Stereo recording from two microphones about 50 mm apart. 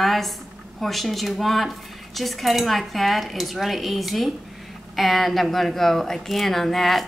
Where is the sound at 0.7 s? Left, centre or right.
Centre.